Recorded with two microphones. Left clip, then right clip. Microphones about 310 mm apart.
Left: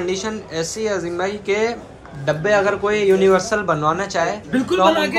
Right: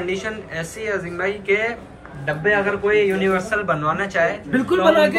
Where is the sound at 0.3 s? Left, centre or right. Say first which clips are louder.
Left 3 dB; centre.